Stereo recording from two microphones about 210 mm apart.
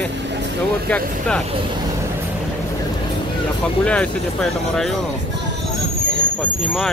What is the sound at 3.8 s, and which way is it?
Speech, 5° left (ahead or behind).